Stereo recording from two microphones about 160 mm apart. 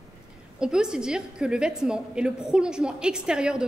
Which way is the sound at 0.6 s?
5° right (ahead or behind).